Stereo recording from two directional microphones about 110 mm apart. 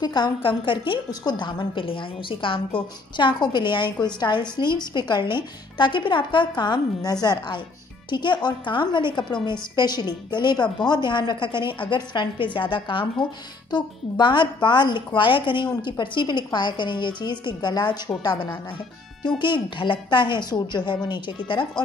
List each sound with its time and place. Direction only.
0.0 s a woman's voice: 45° left (ahead or behind)